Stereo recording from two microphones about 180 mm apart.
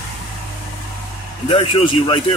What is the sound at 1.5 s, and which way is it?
Speech, 30° left (ahead or behind).